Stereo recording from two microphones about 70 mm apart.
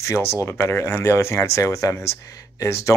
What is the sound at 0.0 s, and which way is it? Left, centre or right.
Speech, left.